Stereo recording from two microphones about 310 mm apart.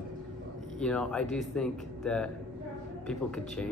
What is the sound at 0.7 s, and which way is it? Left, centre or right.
Speech, centre.